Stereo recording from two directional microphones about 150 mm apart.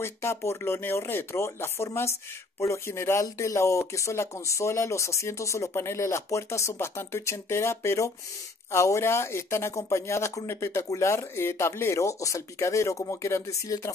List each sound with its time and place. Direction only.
0.0 s speech: 15° left (ahead or behind)